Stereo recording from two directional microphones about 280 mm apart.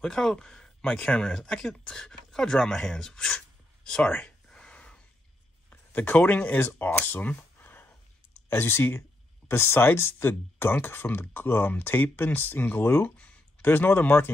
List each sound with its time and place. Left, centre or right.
0.0 s speech: centre